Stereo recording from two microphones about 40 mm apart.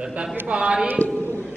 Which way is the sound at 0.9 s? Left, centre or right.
Left.